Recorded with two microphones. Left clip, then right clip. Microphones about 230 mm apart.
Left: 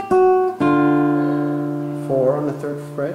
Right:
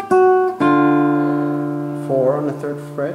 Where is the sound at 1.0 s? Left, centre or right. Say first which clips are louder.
Right 2 dB; right.